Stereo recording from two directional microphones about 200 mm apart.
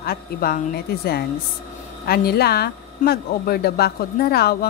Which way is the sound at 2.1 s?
50° left (ahead or behind).